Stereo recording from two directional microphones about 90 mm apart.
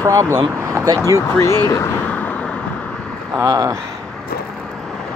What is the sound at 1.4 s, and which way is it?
Speech, 35° left (ahead or behind).